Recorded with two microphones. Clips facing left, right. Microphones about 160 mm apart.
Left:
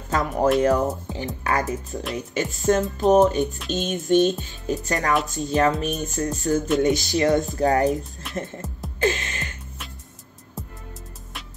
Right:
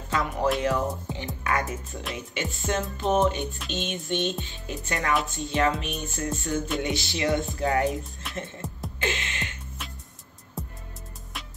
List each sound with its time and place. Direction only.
0.1 s music: 45° left (ahead or behind)
9.0 s music: 40° left (ahead or behind)
10.6 s music: centre (ahead or behind)